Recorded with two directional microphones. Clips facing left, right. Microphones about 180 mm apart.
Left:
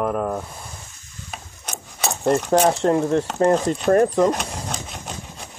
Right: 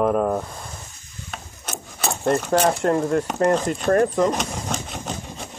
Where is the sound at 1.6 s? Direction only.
Centre (ahead or behind).